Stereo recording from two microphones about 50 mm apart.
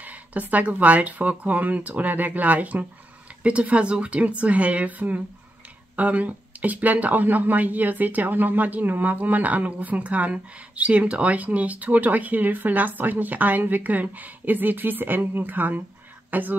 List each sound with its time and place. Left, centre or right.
0.0 s speech: right